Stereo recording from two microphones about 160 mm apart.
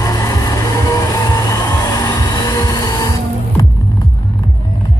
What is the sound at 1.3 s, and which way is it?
Music, 20° left (ahead or behind).